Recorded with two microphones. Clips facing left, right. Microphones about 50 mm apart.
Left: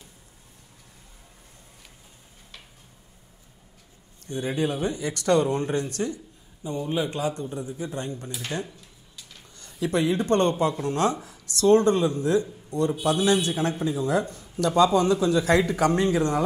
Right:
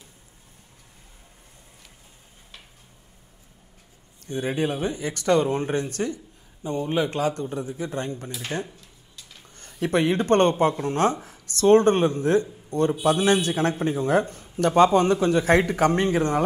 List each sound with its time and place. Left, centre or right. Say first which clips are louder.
4.3 s speech: right 1 dB; right
9.8 s speech: right 2 dB; right
12.6 s a sound: right 2 dB; right
13.0 s speech: right 1 dB; right